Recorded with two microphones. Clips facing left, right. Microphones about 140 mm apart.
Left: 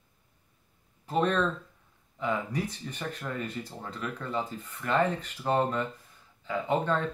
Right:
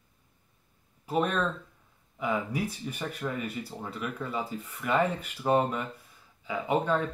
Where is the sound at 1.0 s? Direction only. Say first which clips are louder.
Left 1 dB; 10° right (ahead or behind).